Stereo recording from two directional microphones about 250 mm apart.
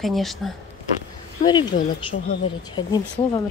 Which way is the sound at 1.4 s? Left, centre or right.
Centre.